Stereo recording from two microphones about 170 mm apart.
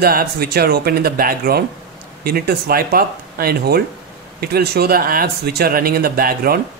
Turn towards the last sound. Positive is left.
turn(degrees=-60)  # may be behind; listen again after turning